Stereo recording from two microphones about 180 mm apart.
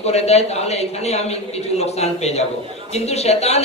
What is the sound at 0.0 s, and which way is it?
A man's voice, 35° left (ahead or behind).